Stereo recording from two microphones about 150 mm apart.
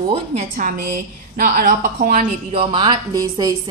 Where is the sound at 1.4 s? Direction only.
90° right.